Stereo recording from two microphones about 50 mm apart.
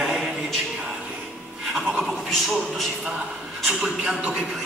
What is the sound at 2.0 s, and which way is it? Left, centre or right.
Speech, centre.